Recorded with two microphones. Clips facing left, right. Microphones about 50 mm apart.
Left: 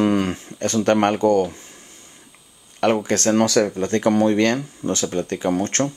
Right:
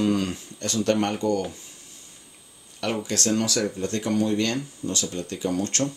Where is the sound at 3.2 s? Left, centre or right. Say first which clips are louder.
Left 7 dB; left.